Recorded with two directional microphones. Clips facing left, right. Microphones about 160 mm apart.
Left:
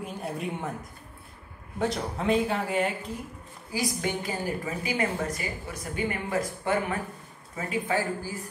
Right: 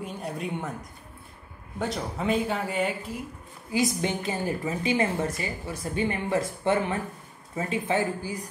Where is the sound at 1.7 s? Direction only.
Centre (ahead or behind).